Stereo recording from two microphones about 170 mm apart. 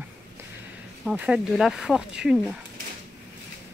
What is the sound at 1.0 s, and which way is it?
Speech, 5° right (ahead or behind).